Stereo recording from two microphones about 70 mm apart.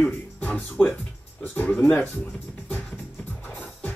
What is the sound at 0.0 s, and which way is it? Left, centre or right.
Speech, left.